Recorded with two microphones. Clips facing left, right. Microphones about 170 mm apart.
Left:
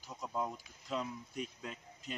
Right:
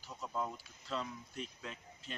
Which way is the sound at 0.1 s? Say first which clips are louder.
Left 1 dB; 10° left (ahead or behind).